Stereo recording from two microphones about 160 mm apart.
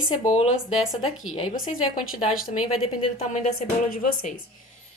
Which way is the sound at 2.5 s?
45° left (ahead or behind).